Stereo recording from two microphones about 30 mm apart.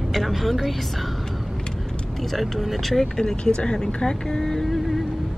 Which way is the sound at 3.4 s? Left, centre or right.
Left.